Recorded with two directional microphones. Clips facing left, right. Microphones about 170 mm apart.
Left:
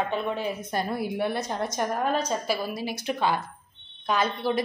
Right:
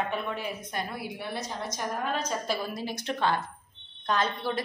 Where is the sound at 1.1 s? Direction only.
60° left (ahead or behind).